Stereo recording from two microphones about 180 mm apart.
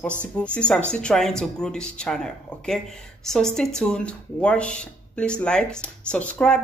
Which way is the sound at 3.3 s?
5° left (ahead or behind).